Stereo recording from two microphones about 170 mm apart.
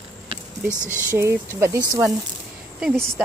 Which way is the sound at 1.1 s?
15° right (ahead or behind).